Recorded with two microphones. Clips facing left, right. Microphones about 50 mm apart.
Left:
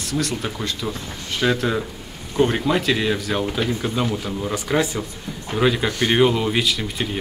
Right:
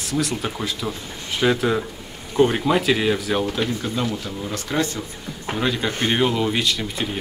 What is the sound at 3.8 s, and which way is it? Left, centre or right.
Speech, centre.